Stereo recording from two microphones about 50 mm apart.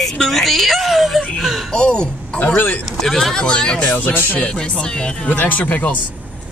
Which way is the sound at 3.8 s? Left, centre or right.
Left.